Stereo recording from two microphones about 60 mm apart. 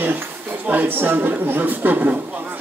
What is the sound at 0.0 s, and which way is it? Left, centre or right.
A woman's voice, right.